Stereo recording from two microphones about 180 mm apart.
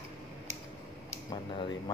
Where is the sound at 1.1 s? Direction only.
20° left (ahead or behind).